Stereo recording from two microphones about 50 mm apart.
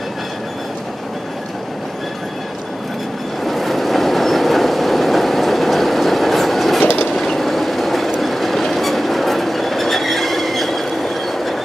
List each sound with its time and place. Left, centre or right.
3.4 s train: centre
6.9 s train: left
7.2 s train: centre